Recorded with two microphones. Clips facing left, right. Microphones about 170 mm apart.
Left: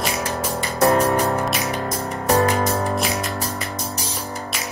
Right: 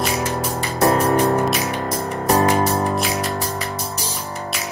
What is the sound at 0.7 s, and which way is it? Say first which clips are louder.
Music: even; 35° right (ahead or behind).